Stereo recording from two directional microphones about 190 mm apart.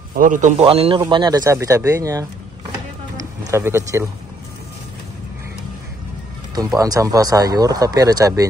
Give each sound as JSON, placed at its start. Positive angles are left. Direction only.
{"t": 0.1, "sound": "speech", "side_deg": -45}
{"t": 0.6, "sound": "speech", "side_deg": -30}
{"t": 6.5, "sound": "speech", "side_deg": -20}